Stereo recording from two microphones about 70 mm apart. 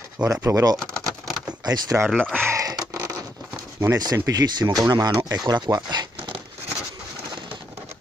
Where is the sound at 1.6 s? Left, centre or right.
Right.